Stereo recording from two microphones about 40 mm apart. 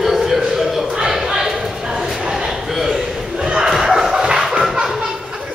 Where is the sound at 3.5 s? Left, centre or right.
Centre.